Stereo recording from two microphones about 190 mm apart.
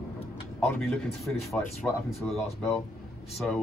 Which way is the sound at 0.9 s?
Centre (ahead or behind).